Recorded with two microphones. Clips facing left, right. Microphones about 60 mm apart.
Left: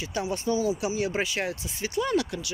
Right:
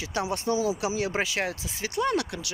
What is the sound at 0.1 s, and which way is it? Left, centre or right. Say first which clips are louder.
Speech: right 1 dB; right.